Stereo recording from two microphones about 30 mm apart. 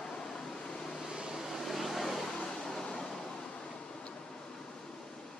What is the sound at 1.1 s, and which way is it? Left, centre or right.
Vehicle, right.